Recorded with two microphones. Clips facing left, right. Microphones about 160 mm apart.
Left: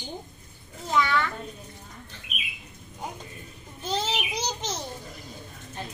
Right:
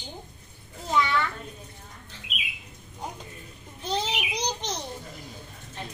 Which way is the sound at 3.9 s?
5° left (ahead or behind).